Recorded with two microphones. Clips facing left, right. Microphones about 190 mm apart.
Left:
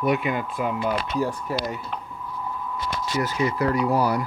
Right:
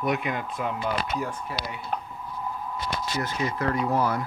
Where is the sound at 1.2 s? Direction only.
35° left (ahead or behind).